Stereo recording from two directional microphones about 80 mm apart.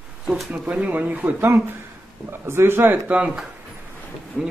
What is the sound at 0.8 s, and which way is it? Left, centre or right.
Speech, right.